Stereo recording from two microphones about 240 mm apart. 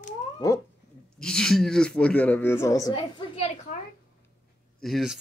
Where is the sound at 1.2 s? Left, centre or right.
Centre.